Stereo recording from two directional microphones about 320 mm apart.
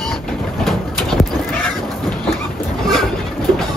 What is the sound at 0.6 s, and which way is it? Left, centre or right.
Cat, centre.